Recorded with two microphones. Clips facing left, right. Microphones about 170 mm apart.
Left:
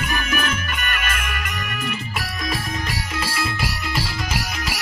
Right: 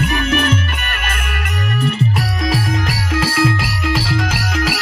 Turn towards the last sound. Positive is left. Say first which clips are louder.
# right 7 dB
turn(degrees=-90)